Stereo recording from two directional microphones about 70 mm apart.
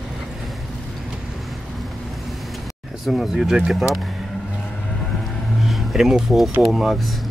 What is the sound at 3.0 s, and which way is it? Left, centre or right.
Speech, centre.